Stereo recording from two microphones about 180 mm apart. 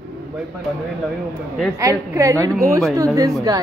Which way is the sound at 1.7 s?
15° right (ahead or behind).